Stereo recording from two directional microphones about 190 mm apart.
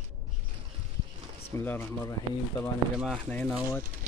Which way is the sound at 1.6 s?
10° left (ahead or behind).